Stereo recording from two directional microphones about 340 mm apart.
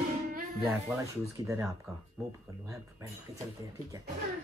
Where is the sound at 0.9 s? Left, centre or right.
Centre.